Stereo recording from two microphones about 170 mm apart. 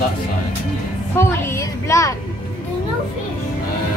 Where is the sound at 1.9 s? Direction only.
20° left (ahead or behind).